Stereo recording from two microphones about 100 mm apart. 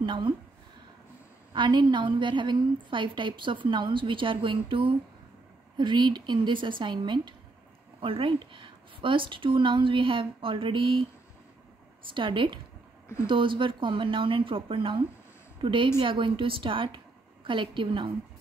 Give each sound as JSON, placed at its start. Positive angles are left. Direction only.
{"t": 0.0, "sound": "speech", "side_deg": -55}
{"t": 1.5, "sound": "a woman's voice", "side_deg": -50}
{"t": 5.8, "sound": "speech", "side_deg": -50}
{"t": 8.0, "sound": "a woman's voice", "side_deg": -65}
{"t": 12.1, "sound": "a woman's voice", "side_deg": -55}